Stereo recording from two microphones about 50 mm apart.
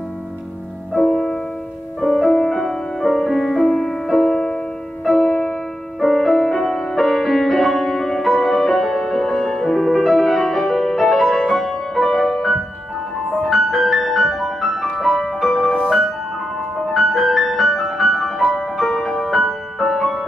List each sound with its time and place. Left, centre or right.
0.9 s music: centre
16.7 s music: centre